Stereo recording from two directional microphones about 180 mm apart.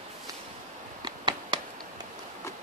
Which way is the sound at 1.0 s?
25° right (ahead or behind).